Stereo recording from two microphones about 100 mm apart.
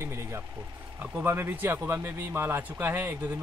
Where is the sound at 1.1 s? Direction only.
20° right (ahead or behind).